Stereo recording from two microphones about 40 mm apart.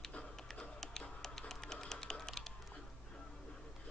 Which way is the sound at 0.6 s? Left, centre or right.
Centre.